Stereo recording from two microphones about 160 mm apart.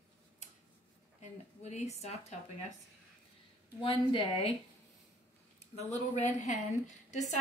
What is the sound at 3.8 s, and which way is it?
Speech, 30° left (ahead or behind).